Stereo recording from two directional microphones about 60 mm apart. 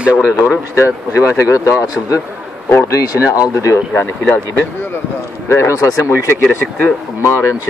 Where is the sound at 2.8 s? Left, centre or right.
Left.